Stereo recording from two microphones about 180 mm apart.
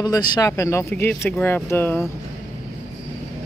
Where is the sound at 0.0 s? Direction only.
25° left (ahead or behind).